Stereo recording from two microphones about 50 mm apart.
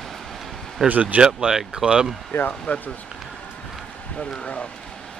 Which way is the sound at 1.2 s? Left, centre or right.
Centre.